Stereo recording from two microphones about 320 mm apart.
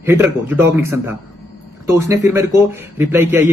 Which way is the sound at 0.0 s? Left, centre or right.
Centre.